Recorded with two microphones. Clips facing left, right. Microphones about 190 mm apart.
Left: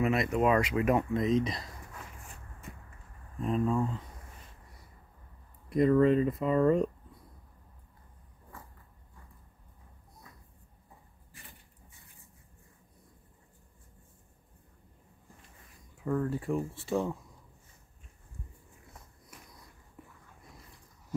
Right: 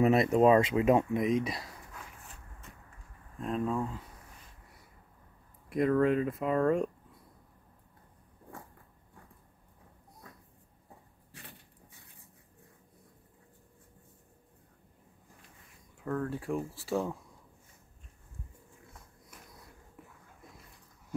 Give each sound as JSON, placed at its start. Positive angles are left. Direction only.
{"t": 0.0, "sound": "speech", "side_deg": -30}
{"t": 3.3, "sound": "speech", "side_deg": 5}
{"t": 5.7, "sound": "speech", "side_deg": -5}
{"t": 11.3, "sound": "a sound", "side_deg": -70}
{"t": 16.0, "sound": "speech", "side_deg": 5}